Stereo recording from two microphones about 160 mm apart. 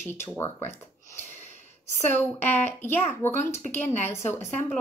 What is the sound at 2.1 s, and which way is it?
Speech, 15° left (ahead or behind).